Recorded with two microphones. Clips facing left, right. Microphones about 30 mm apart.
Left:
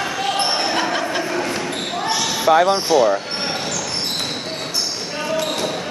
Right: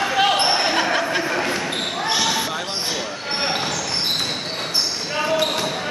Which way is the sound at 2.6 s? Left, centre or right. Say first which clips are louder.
Left 10 dB; centre.